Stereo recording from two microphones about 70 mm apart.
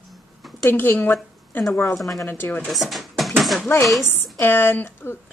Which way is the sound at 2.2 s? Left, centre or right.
Left.